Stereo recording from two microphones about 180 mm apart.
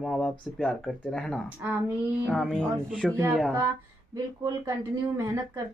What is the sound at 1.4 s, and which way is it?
Speech, 10° right (ahead or behind).